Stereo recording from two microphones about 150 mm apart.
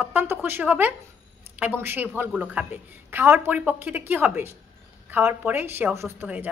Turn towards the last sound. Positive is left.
turn(degrees=-15)  # may be behind; listen again after turning